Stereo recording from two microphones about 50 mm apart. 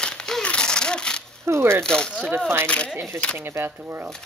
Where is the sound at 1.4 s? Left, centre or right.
Right.